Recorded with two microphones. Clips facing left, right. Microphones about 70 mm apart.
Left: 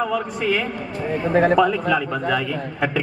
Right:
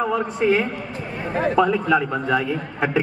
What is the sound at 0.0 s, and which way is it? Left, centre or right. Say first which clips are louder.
A man's voice: right 2 dB; right.